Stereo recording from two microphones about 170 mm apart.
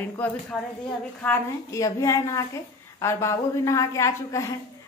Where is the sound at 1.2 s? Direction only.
15° left (ahead or behind).